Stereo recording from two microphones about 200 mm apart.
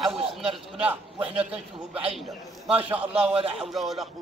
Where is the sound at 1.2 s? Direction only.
30° right (ahead or behind).